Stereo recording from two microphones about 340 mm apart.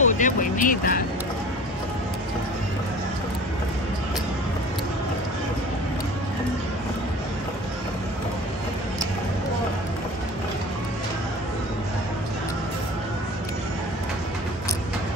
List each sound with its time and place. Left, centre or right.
0.0 s speech: left